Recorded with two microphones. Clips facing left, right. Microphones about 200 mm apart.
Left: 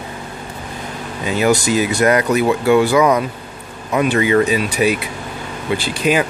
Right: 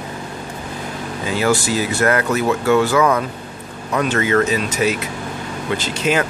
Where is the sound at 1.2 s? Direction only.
20° left (ahead or behind).